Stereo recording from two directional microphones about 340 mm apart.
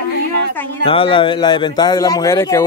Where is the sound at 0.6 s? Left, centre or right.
Centre.